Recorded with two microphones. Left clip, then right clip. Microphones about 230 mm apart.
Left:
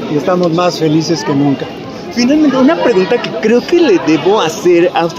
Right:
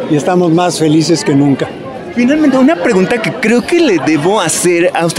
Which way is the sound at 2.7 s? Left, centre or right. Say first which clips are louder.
Left 1 dB; right.